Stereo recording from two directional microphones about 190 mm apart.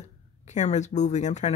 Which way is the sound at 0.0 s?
40° left (ahead or behind).